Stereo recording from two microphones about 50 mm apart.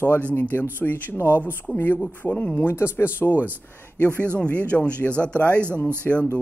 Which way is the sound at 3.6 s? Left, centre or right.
Left.